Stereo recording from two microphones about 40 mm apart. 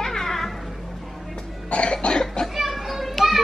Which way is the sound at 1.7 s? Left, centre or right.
Left.